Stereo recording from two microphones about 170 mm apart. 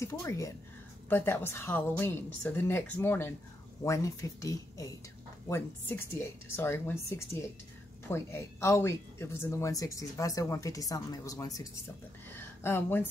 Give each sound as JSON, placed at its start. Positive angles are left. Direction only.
{"t": 0.0, "sound": "a woman's voice", "side_deg": 15}